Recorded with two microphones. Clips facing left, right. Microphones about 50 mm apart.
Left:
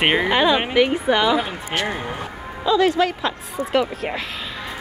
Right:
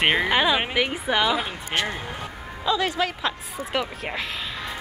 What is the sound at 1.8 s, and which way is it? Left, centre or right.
Speech, left.